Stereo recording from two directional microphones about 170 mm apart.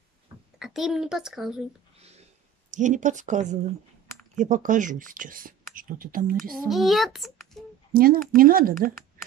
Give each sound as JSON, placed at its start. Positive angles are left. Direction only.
{"t": 0.6, "sound": "speech", "side_deg": 0}
{"t": 2.7, "sound": "speech", "side_deg": -45}
{"t": 6.7, "sound": "a child's voice", "side_deg": 0}
{"t": 7.9, "sound": "speech", "side_deg": -60}